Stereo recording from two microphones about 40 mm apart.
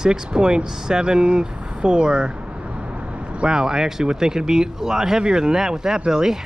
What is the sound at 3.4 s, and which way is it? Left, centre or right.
Speech, centre.